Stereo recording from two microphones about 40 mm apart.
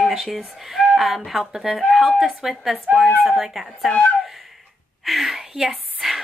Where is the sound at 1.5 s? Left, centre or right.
Centre.